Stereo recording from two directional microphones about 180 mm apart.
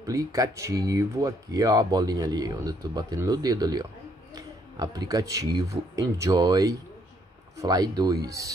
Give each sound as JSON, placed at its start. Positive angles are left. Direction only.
{"t": 0.0, "sound": "speech", "side_deg": -20}